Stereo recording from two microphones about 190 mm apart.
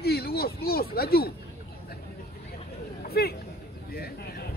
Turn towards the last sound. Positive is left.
turn(degrees=55)  # may be behind; listen again after turning